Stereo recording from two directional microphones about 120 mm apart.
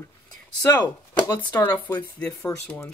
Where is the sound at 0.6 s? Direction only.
20° left (ahead or behind).